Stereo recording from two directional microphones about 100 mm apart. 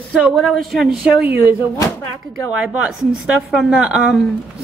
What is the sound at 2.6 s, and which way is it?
A woman's voice, 10° right (ahead or behind).